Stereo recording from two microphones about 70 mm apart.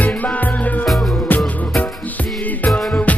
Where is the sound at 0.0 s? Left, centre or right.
Left.